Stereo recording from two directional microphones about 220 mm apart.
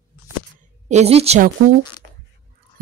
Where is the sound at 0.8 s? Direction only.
30° right (ahead or behind).